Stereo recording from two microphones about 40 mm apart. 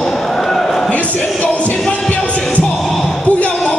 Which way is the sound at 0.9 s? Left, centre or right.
Left.